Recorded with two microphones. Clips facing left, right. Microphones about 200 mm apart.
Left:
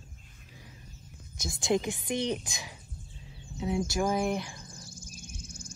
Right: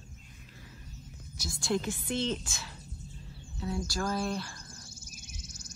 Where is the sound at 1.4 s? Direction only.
20° left (ahead or behind).